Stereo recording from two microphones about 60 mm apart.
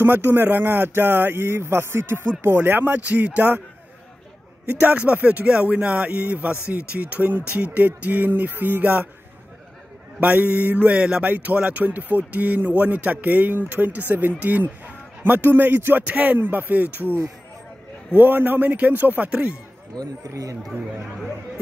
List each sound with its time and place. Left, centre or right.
0.0 s speech: right
2.5 s speech: right
4.7 s speech: right
10.2 s speech: right
11.0 s speech: centre
11.2 s a man's voice: right
16.1 s speech: right
20.0 s speech: right